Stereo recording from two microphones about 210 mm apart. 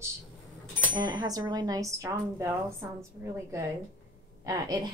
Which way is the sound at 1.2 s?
20° right (ahead or behind).